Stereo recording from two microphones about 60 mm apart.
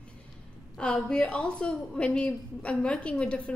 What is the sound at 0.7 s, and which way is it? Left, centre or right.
A woman's voice, centre.